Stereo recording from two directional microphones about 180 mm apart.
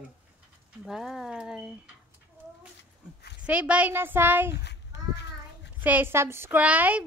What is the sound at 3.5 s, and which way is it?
Speech, 5° right (ahead or behind).